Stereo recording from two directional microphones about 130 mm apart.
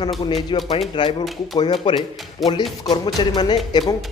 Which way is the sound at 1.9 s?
35° left (ahead or behind).